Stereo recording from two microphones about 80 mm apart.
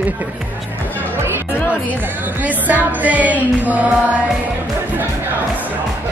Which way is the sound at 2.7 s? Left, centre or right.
Centre.